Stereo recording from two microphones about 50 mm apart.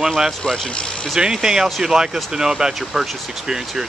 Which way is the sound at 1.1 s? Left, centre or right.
Centre.